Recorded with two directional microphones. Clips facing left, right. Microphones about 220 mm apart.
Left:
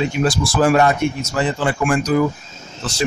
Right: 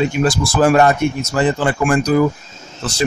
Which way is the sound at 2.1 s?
40° right (ahead or behind).